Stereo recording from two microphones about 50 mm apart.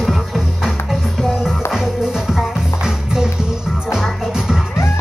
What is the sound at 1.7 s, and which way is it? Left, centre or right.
Music, centre.